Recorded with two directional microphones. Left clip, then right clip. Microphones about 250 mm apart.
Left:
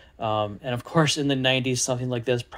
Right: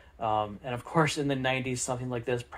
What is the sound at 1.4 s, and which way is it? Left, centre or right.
Speech, left.